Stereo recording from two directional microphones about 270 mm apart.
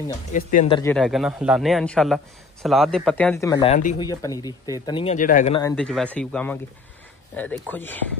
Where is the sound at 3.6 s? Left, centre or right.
Left.